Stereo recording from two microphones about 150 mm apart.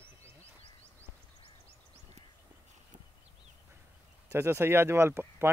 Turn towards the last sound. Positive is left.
turn(degrees=-15)  # may be behind; listen again after turning